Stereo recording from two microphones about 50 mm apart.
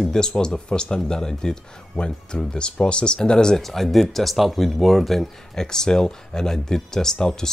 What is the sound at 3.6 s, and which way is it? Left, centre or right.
Speech, centre.